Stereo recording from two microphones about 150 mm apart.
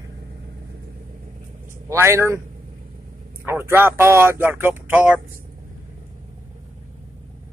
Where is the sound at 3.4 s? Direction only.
15° right (ahead or behind).